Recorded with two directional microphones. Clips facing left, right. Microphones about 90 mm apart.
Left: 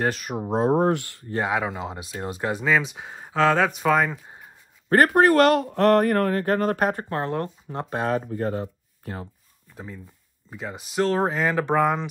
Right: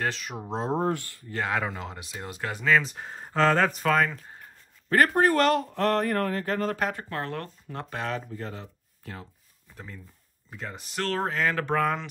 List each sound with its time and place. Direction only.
0.1 s speech: 50° left (ahead or behind); by 1.1 s 70° left (ahead or behind)
1.3 s speech: 15° left (ahead or behind)
4.8 s a sound: 50° left (ahead or behind)
5.1 s speech: 70° left (ahead or behind); by 7.1 s 45° left (ahead or behind)
7.1 s speech: 25° left (ahead or behind)
8.1 s speech: 45° left (ahead or behind)
9.8 s speech: 10° left (ahead or behind)